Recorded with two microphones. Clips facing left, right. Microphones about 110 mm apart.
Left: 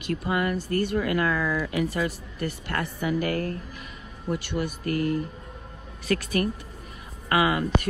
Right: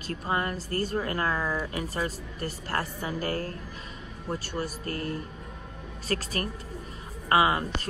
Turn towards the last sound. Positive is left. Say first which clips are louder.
# even
turn(degrees=-30)  # may be behind; listen again after turning